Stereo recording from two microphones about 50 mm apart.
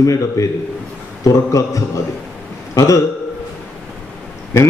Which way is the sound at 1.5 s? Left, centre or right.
Left.